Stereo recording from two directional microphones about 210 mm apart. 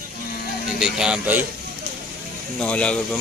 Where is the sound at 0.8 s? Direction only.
5° right (ahead or behind).